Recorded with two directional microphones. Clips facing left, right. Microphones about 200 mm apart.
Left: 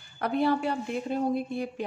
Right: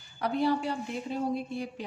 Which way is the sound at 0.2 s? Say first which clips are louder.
Left 2 dB; 55° left (ahead or behind).